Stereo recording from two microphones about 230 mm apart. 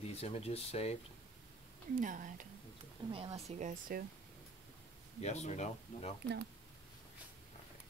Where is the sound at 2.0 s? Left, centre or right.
Right.